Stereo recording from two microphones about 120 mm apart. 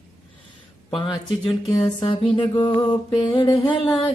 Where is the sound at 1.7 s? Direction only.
35° left (ahead or behind).